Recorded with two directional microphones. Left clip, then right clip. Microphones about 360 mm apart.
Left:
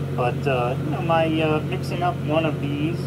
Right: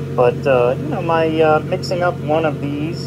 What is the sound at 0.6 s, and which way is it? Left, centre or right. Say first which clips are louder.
Speech: right 7 dB; centre.